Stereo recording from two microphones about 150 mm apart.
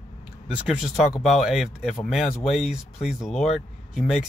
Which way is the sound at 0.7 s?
Centre (ahead or behind).